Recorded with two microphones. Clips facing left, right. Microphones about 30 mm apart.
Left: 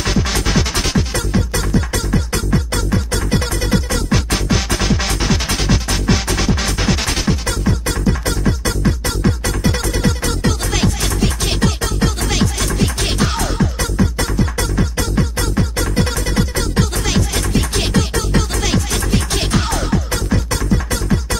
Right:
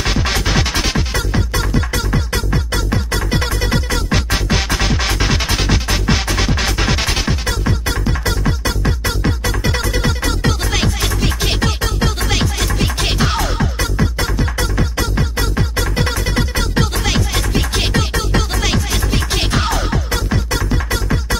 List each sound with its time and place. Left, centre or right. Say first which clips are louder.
0.0 s music: even; centre